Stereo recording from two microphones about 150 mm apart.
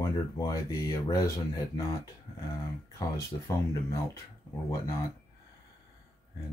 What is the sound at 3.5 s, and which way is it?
Speech, 25° left (ahead or behind).